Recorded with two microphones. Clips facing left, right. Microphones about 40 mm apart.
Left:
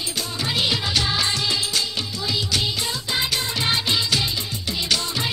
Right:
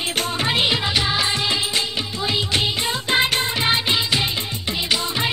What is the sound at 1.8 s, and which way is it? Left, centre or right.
Music, right.